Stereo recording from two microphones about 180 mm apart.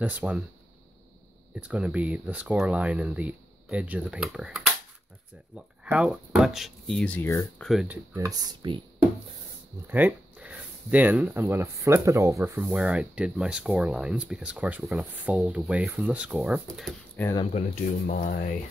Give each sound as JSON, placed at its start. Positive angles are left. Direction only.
{"t": 0.0, "sound": "speech", "side_deg": -5}
{"t": 1.5, "sound": "speech", "side_deg": -5}
{"t": 5.9, "sound": "speech", "side_deg": -5}
{"t": 7.6, "sound": "speech", "side_deg": -5}
{"t": 8.3, "sound": "speech", "side_deg": -25}
{"t": 9.8, "sound": "speech", "side_deg": -10}
{"t": 12.6, "sound": "speech", "side_deg": -5}
{"t": 17.2, "sound": "speech", "side_deg": 10}
{"t": 17.6, "sound": "speech", "side_deg": 45}